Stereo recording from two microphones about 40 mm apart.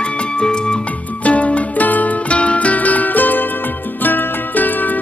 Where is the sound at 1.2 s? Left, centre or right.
Left.